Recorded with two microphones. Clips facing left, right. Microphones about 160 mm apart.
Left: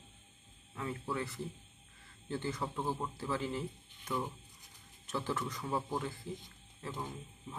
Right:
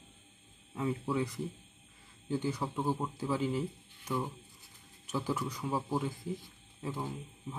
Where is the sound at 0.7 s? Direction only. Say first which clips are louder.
Right 6 dB; 15° right (ahead or behind).